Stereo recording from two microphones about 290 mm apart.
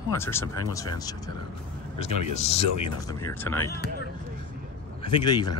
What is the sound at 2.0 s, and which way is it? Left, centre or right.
Speech, left.